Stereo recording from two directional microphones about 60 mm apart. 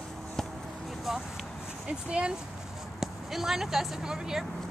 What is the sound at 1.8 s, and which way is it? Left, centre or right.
Speech, centre.